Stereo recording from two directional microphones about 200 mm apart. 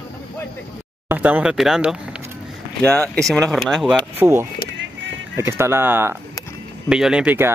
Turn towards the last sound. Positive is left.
turn(degrees=-10)  # may be behind; listen again after turning